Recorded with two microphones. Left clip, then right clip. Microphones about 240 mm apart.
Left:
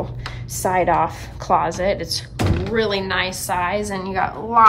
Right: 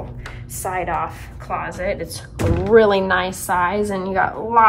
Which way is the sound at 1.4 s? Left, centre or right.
Centre.